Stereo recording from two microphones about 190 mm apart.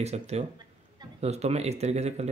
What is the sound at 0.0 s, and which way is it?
Speech, 35° right (ahead or behind).